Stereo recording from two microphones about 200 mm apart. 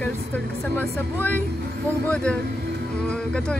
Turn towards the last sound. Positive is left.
turn(degrees=5)  # may be behind; listen again after turning